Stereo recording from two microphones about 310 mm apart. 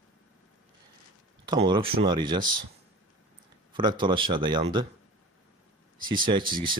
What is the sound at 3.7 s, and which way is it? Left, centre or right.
Speech, centre.